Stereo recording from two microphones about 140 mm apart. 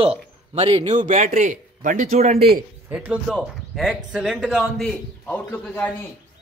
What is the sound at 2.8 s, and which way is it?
A man's voice, 10° right (ahead or behind).